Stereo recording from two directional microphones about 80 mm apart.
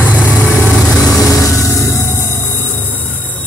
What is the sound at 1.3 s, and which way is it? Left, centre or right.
Vehicle, left.